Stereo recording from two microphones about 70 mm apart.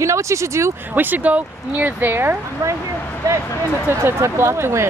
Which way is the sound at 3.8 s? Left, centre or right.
Right.